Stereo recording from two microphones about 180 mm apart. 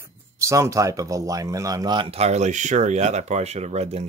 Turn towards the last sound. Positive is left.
turn(degrees=-35)  # may be behind; listen again after turning